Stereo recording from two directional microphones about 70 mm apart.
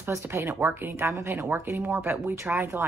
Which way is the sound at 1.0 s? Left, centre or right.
Right.